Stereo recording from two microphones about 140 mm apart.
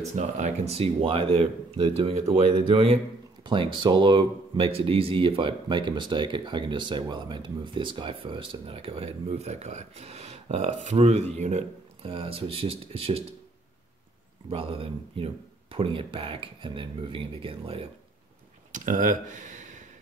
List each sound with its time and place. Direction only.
0.1 s speech: 55° right (ahead or behind)
14.5 s speech: 40° right (ahead or behind)
18.7 s speech: 70° right (ahead or behind)